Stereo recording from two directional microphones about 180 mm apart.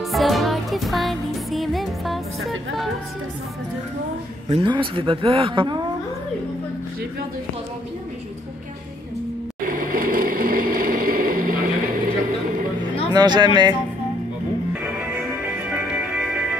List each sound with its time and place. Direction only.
0.0 s music: centre (ahead or behind)
4.5 s speech: 30° right (ahead or behind)
9.6 s a sound: 50° right (ahead or behind)
13.1 s speech: 25° right (ahead or behind)
15.0 s music: 10° right (ahead or behind)